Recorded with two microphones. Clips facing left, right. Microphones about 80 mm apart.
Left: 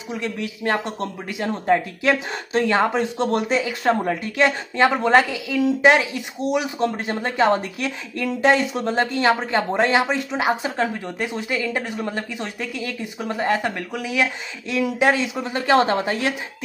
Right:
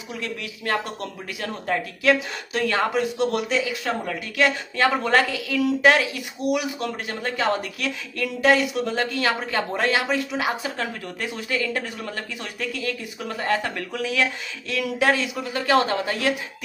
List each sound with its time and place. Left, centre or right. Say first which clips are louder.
0.1 s speech: left 5 dB; left